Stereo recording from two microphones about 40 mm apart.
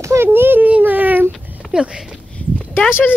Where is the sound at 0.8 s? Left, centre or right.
Right.